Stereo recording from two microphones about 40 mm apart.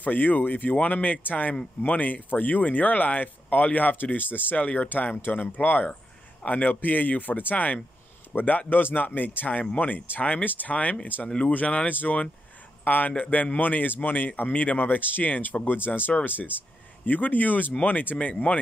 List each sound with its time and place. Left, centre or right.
0.0 s speech: left
4.1 s speech: left
4.6 s speech: left
4.8 s speech: left
11.9 s speech: left
18.3 s speech: left